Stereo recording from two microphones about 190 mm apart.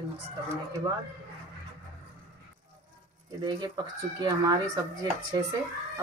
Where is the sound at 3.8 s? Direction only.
20° right (ahead or behind).